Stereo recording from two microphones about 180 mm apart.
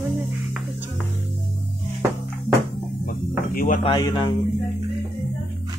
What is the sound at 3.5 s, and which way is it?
Speech, 50° left (ahead or behind).